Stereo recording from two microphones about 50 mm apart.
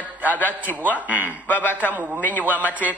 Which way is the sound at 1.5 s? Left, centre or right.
Left.